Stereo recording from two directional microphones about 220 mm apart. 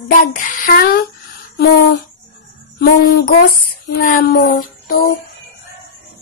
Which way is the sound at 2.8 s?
45° left (ahead or behind).